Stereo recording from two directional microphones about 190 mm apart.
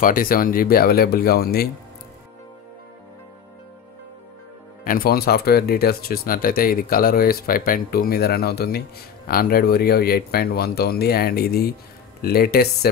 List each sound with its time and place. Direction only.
0.0 s speech: 50° left (ahead or behind)
4.8 s speech: 50° left (ahead or behind)